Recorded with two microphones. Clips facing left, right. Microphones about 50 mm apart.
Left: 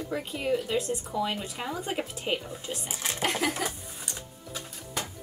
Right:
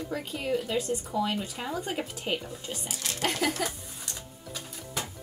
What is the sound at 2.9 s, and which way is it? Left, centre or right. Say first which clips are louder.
Speech: left 2 dB; left.